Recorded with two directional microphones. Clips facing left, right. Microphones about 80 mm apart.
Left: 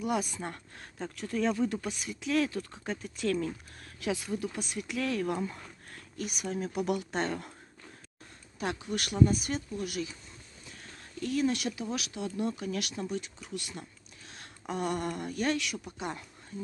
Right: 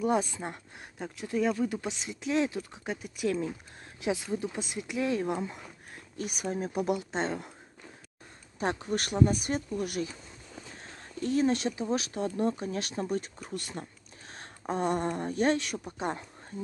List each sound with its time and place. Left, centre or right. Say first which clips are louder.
0.0 s speech: right 4 dB; right
0.4 s speech: right 1 dB; centre
1.8 s speech: right 1 dB; right
6.1 s speech: right 2 dB; right
6.9 s speech: even; right
8.5 s speech: right 3 dB; right